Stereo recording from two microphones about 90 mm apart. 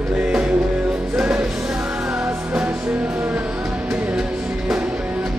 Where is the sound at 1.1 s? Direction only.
10° right (ahead or behind).